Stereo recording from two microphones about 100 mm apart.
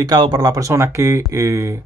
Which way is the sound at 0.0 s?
45° right (ahead or behind).